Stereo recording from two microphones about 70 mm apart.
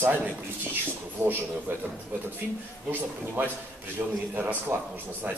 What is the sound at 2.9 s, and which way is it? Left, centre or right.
A man's voice, right.